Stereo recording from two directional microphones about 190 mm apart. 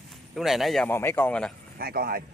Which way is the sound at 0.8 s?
10° left (ahead or behind).